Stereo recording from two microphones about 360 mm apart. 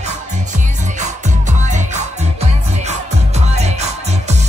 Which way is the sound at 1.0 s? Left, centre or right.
Centre.